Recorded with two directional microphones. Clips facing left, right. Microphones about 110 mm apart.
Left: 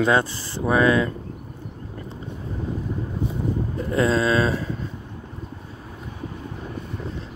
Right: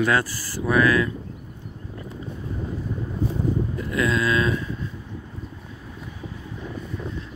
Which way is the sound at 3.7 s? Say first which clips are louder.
Left 7 dB; 35° left (ahead or behind).